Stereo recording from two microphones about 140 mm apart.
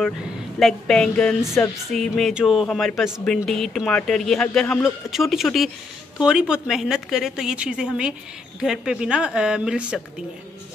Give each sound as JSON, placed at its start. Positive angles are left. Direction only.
{"t": 0.6, "sound": "a woman's voice", "side_deg": 5}
{"t": 1.4, "sound": "music", "side_deg": 20}
{"t": 1.9, "sound": "a woman's voice", "side_deg": 0}